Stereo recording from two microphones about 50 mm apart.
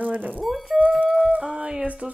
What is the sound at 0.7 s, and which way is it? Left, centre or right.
Speech, right.